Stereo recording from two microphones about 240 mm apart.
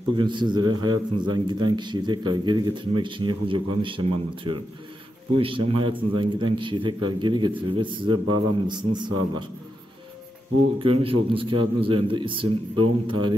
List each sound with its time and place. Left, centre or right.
0.1 s a man's voice: centre
10.8 s a man's voice: right